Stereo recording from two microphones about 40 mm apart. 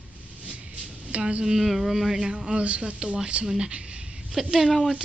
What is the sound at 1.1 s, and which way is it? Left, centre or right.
Speech, right.